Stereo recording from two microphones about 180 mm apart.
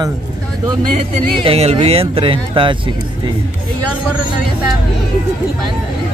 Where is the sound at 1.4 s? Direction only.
35° right (ahead or behind).